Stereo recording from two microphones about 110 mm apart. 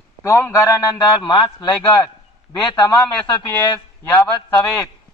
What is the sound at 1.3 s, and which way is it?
Speech, 50° left (ahead or behind).